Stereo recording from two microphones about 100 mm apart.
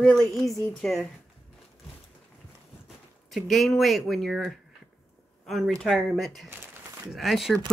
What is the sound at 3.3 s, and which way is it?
Speech, centre (ahead or behind).